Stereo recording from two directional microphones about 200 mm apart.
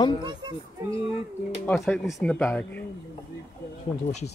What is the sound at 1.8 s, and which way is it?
Speech, centre (ahead or behind).